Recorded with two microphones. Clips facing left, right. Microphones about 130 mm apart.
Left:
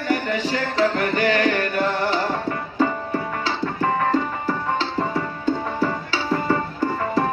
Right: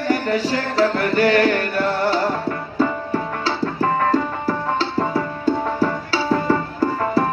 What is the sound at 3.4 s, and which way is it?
Music, 40° right (ahead or behind).